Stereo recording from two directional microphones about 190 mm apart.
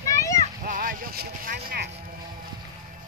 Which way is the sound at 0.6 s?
45° right (ahead or behind).